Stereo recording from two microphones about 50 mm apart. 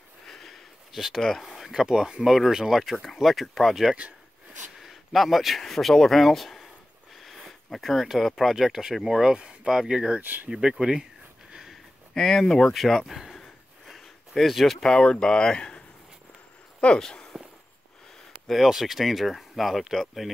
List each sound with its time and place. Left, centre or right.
0.3 s sniff: centre
0.9 s speech: centre
4.7 s a sound: centre
5.6 s speech: centre
10.2 s speech: right
10.5 s speech: centre
11.5 s a sound: centre
12.1 s speech: centre
13.4 s a sound: centre
14.8 s speech: centre
17.0 s speech: centre
18.5 s speech: centre